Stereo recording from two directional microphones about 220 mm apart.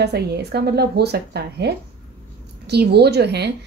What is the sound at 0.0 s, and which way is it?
A woman's voice, 50° right (ahead or behind).